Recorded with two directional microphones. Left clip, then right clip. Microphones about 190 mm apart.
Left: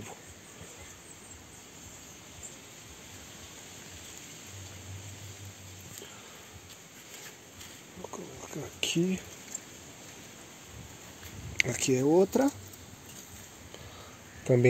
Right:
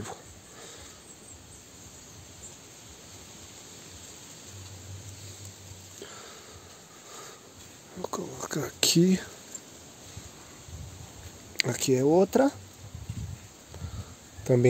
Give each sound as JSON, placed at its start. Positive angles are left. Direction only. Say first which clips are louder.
{"t": 8.0, "sound": "a sound", "louder": "right 8 dB", "side_deg": -50}
{"t": 11.5, "sound": "speech", "louder": "right 2 dB", "side_deg": -25}
{"t": 14.4, "sound": "insect", "louder": "right 1 dB", "side_deg": -10}